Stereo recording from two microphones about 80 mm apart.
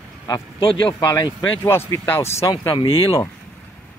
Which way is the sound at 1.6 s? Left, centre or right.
Left.